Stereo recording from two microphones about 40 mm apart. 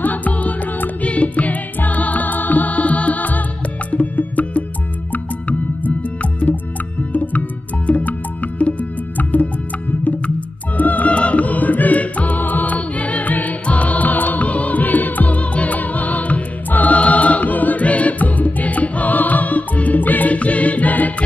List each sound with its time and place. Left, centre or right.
0.0 s music: left
10.8 s music: left
12.4 s music: left
20.3 s music: left